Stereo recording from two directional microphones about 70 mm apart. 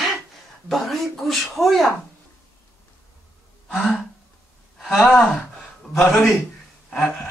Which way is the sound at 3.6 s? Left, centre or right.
Centre.